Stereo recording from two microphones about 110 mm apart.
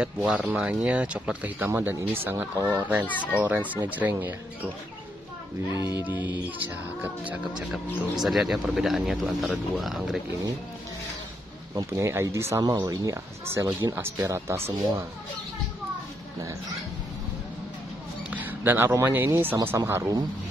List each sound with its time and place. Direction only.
0.0 s speech: 5° right (ahead or behind)
3.1 s speech: 15° left (ahead or behind)
3.7 s speech: 15° right (ahead or behind)
5.8 s speech: 40° left (ahead or behind)
6.0 s speech: 15° right (ahead or behind); by 10.2 s centre (ahead or behind)
11.7 s speech: 25° right (ahead or behind)
12.6 s speech: 35° right (ahead or behind)
18.3 s speech: 15° right (ahead or behind)